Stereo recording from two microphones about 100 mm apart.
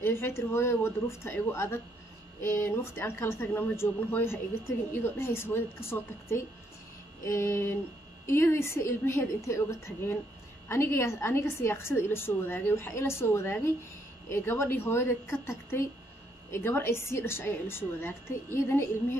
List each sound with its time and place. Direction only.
0.0 s a woman's voice: 25° left (ahead or behind)